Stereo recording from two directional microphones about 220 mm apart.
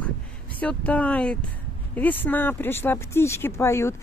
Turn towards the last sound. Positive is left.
turn(degrees=10)  # may be behind; listen again after turning